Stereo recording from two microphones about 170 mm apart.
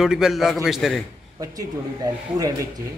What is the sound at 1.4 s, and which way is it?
A man's voice, 20° right (ahead or behind).